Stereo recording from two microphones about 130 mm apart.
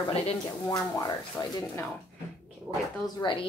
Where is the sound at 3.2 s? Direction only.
30° left (ahead or behind).